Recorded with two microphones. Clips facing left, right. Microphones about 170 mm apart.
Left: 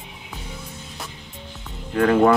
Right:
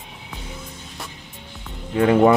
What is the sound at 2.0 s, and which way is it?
Speech, 15° right (ahead or behind).